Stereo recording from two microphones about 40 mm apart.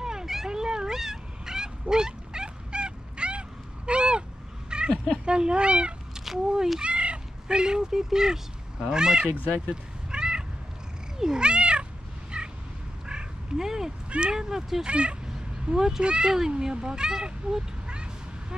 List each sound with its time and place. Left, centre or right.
0.0 s cat: centre
4.6 s a sound: right
5.2 s speech: right
6.1 s cat: centre
6.8 s speech: right
9.7 s cat: centre
12.3 s vehicle: right
13.0 s quack: centre
14.0 s a sound: right
14.3 s speech: centre
14.9 s speech: right
15.2 s cat: centre
16.0 s speech: right